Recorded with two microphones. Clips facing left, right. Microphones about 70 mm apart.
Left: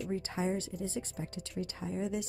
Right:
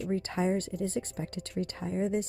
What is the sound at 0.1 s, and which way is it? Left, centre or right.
A woman's voice, right.